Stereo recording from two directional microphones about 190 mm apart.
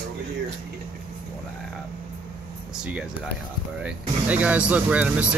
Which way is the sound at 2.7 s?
5° right (ahead or behind).